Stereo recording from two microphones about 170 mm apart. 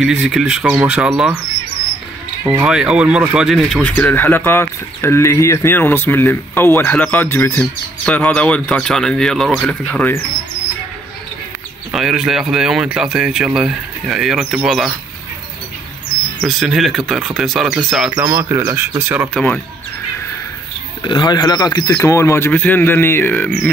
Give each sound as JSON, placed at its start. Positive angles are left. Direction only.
{"t": 0.0, "sound": "speech", "side_deg": -5}
{"t": 2.6, "sound": "speech", "side_deg": -5}
{"t": 11.9, "sound": "speech", "side_deg": -5}
{"t": 16.4, "sound": "speech", "side_deg": 0}
{"t": 18.1, "sound": "speech", "side_deg": -15}
{"t": 19.3, "sound": "speech", "side_deg": 5}
{"t": 21.0, "sound": "speech", "side_deg": 25}